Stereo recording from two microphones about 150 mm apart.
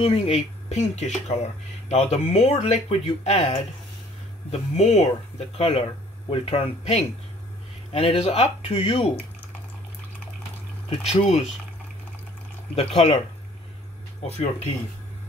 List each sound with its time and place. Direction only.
0.0 s a man's voice: 40° left (ahead or behind)
11.1 s speech: 45° left (ahead or behind)
12.7 s a man's voice: 40° left (ahead or behind)
14.2 s speech: 45° left (ahead or behind)